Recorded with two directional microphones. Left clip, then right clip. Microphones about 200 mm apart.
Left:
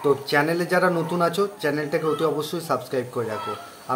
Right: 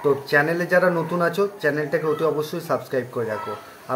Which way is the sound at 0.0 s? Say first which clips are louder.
Right 1 dB; 10° left (ahead or behind).